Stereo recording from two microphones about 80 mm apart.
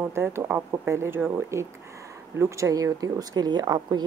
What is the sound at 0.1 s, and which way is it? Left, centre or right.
Speech, right.